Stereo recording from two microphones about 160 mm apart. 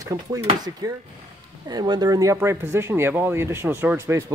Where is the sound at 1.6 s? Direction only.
25° right (ahead or behind).